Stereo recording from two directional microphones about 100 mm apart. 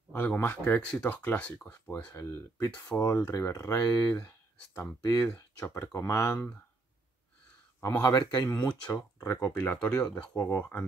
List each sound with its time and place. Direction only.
0.1 s speech: 10° left (ahead or behind)
2.1 s speech: 30° left (ahead or behind)
3.7 s speech: 20° left (ahead or behind)
7.8 s speech: 35° left (ahead or behind)
9.2 s speech: 25° left (ahead or behind)